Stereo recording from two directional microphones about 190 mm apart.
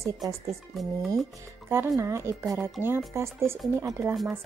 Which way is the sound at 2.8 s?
10° right (ahead or behind).